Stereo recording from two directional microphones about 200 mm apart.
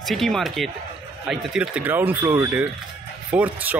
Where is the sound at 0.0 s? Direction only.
Centre (ahead or behind).